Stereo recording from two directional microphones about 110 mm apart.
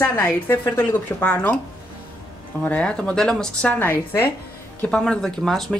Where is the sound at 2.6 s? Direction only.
10° left (ahead or behind).